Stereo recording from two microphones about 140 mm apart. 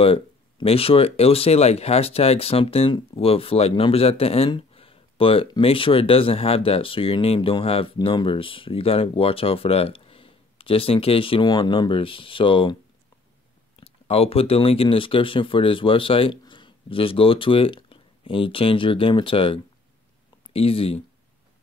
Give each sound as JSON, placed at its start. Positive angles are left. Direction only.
{"t": 0.0, "sound": "speech", "side_deg": 40}
{"t": 13.7, "sound": "speech", "side_deg": 45}